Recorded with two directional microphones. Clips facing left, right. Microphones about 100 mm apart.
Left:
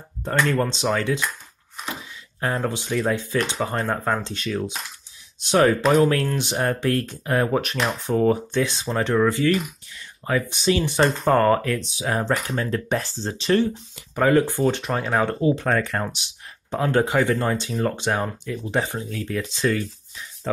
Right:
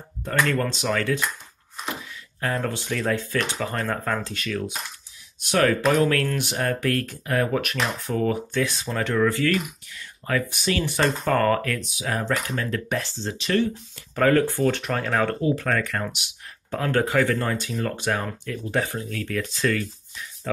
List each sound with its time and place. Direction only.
0.2 s speech: 30° left (ahead or behind)
2.4 s speech: 20° left (ahead or behind)
13.9 s speech: 15° left (ahead or behind); by 16.3 s 30° left (ahead or behind)
16.7 s speech: 20° left (ahead or behind)